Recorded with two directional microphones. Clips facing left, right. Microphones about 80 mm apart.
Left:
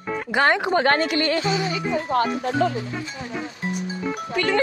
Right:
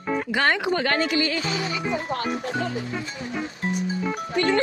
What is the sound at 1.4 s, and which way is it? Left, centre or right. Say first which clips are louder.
Speech: left 5 dB; left.